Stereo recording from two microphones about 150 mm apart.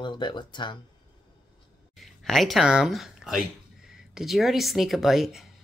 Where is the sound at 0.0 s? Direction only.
30° left (ahead or behind).